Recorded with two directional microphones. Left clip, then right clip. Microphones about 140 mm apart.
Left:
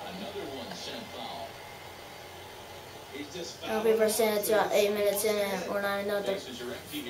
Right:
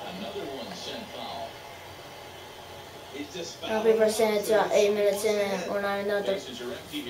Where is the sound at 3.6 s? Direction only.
15° left (ahead or behind).